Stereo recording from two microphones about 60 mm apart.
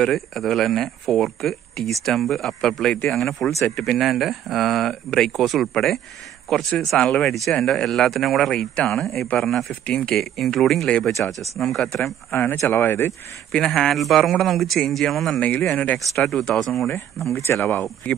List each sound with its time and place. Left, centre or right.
0.0 s speech: centre
9.8 s speech: centre
10.1 s speech: centre
12.0 s speech: left
13.7 s speech: centre
15.4 s speech: left
16.0 s speech: centre
17.3 s speech: left
18.1 s speech: centre